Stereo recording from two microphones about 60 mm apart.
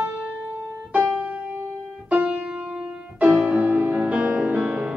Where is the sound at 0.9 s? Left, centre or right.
Right.